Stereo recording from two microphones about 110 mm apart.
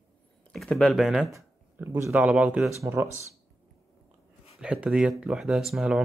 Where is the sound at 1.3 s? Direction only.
25° right (ahead or behind).